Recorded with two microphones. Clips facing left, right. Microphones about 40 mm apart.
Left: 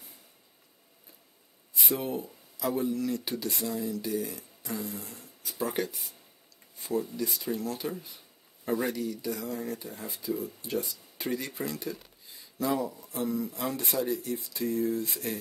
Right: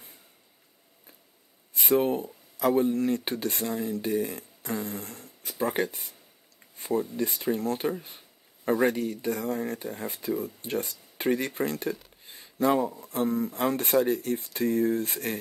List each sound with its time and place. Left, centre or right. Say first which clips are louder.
1.7 s speech: right 8 dB; right